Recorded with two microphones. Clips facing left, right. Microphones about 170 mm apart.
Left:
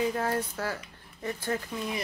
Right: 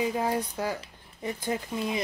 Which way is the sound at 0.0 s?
15° right (ahead or behind).